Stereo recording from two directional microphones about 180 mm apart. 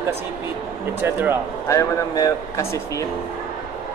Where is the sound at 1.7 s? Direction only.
20° left (ahead or behind).